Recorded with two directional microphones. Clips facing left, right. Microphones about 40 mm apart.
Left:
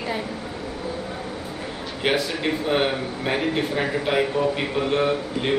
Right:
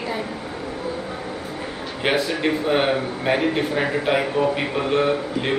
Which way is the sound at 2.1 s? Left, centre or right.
Centre.